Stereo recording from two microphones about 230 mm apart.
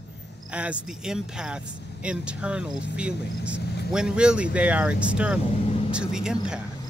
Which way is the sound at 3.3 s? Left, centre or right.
Left.